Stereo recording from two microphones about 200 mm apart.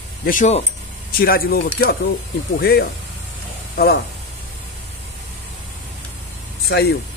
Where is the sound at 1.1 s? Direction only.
50° left (ahead or behind).